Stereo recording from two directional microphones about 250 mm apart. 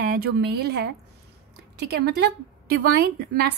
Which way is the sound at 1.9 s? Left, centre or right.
Right.